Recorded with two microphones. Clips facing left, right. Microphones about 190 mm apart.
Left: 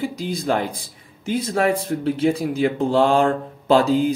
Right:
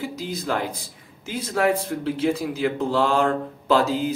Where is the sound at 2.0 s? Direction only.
20° left (ahead or behind).